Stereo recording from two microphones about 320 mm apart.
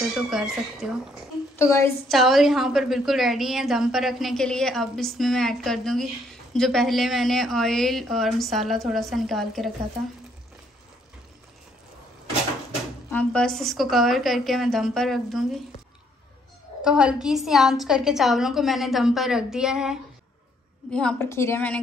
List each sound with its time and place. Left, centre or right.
0.1 s a woman's voice: centre
13.1 s a woman's voice: centre
16.8 s a woman's voice: centre